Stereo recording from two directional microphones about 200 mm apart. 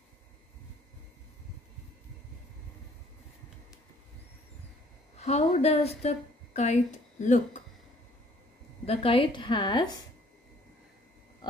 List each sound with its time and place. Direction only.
5.1 s a woman's voice: 30° left (ahead or behind)
8.8 s a woman's voice: 30° left (ahead or behind)